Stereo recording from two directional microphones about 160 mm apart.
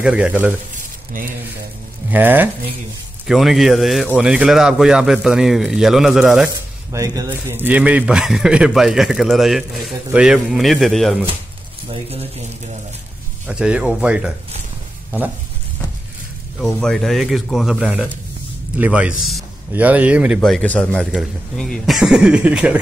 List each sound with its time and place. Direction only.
0.0 s speech: 5° right (ahead or behind)
2.0 s speech: 10° right (ahead or behind)
3.3 s speech: centre (ahead or behind)
6.5 s speech: 20° right (ahead or behind); by 11.2 s centre (ahead or behind)
11.9 s speech: 40° right (ahead or behind)
13.5 s speech: 5° right (ahead or behind)
16.6 s speech: centre (ahead or behind)
20.3 s speech: 5° left (ahead or behind)